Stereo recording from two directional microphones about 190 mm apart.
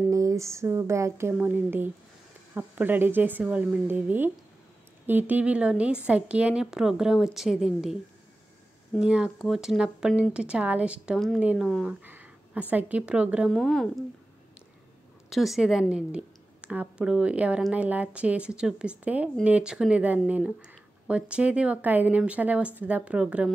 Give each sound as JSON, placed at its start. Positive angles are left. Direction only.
{"t": 0.1, "sound": "a woman's voice", "side_deg": -15}
{"t": 15.2, "sound": "a woman's voice", "side_deg": 0}